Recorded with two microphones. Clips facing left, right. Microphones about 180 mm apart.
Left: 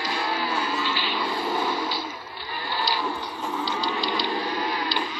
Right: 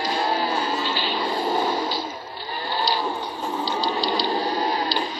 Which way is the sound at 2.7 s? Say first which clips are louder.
Right 3 dB; 30° right (ahead or behind).